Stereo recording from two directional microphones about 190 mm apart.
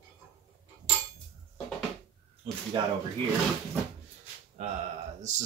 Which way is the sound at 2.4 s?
30° right (ahead or behind).